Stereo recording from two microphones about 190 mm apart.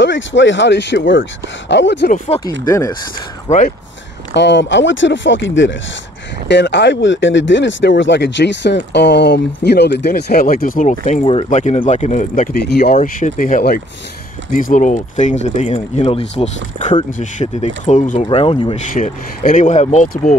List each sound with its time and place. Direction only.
0.0 s speech: 75° left (ahead or behind)
2.0 s speech: 45° left (ahead or behind)
2.6 s speech: 15° left (ahead or behind)
3.4 s speech: 40° left (ahead or behind)
4.3 s speech: 65° left (ahead or behind); by 18.8 s 30° left (ahead or behind)
18.9 s speech: 40° left (ahead or behind)